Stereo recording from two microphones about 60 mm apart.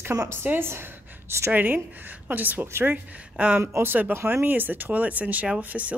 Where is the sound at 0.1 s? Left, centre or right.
Right.